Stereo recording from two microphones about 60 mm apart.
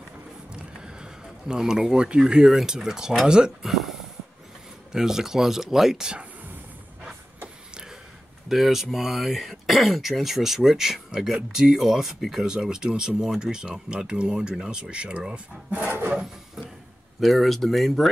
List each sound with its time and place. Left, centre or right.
0.5 s speech: centre
3.7 s a sound: centre
4.9 s speech: centre
8.5 s speech: centre
15.7 s wood: right
17.2 s speech: centre